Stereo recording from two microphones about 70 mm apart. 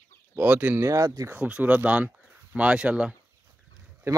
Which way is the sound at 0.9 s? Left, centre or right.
Right.